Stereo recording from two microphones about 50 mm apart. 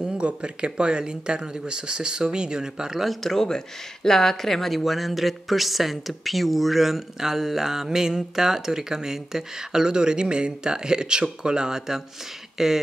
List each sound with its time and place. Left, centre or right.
0.2 s speech: right
3.1 s speech: centre